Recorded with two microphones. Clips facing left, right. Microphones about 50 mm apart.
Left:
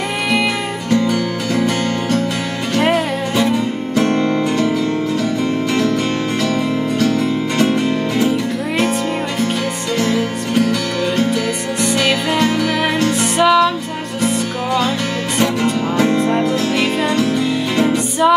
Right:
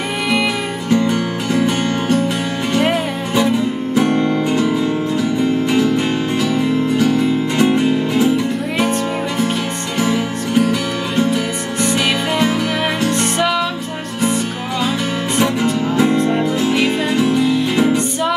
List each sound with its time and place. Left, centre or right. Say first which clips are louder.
0.8 s music: even; right
3.9 s music: even; centre
4.5 s music: even; centre
9.9 s music: even; centre
13.1 s music: left 4 dB; centre